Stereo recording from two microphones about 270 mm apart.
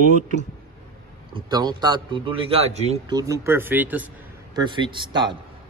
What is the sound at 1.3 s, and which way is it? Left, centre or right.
A man's voice, centre.